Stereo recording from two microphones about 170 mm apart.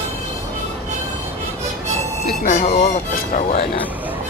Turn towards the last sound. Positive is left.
turn(degrees=45)  # may be behind; listen again after turning